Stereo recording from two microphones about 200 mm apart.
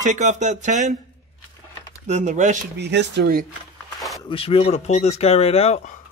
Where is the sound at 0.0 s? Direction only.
35° right (ahead or behind).